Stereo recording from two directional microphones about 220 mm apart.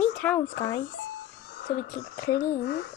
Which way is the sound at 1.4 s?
40° left (ahead or behind).